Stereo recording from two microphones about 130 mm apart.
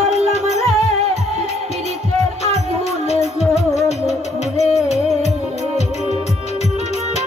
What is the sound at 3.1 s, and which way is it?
Music, 55° left (ahead or behind).